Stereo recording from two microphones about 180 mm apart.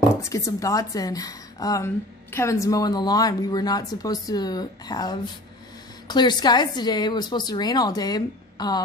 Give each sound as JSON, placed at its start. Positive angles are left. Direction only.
{"t": 0.2, "sound": "speech", "side_deg": 20}